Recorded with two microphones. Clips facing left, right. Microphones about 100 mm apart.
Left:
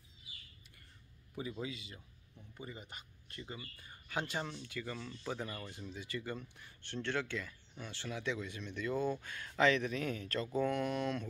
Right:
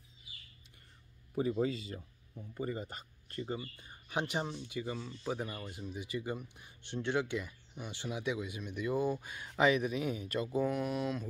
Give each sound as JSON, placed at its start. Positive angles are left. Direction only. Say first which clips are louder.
{"t": 1.3, "sound": "speech", "louder": "right 10 dB", "side_deg": -40}
{"t": 3.7, "sound": "speech", "louder": "right 3 dB", "side_deg": -20}